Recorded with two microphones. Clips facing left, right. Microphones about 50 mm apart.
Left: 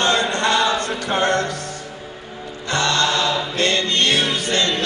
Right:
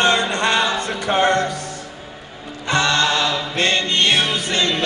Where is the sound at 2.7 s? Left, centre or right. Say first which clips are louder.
Right 2 dB; right.